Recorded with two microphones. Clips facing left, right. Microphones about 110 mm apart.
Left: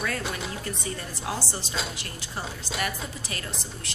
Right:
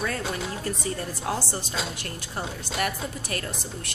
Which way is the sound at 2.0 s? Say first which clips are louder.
Right 2 dB; 50° right (ahead or behind).